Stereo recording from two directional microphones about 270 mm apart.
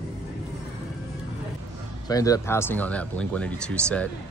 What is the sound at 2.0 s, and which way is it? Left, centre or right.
Speech, centre.